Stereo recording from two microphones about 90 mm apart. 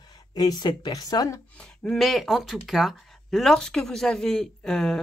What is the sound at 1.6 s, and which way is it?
Speech, 5° left (ahead or behind).